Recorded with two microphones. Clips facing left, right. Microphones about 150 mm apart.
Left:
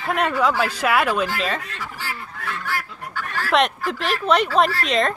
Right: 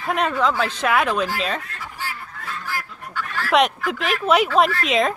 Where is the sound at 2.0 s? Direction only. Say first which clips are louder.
Right 1 dB; 75° left (ahead or behind).